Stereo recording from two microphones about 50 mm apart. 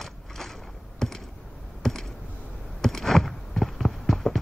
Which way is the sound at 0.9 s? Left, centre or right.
Centre.